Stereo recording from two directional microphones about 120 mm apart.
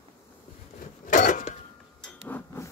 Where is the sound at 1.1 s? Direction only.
90° left.